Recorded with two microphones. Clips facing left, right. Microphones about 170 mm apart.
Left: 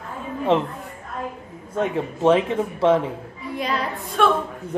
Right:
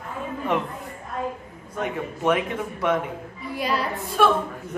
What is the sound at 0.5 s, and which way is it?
Speech, 25° left (ahead or behind).